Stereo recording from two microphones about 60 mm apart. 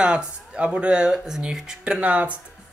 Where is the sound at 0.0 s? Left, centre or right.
Centre.